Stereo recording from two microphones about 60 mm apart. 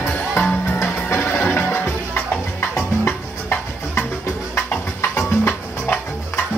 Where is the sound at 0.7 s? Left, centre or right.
Left.